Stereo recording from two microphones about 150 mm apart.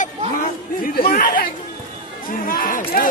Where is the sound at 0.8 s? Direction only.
70° left (ahead or behind).